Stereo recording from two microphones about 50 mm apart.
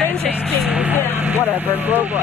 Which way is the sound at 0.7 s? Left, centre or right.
Right.